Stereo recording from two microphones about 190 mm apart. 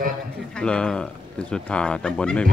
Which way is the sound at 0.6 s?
5° left (ahead or behind).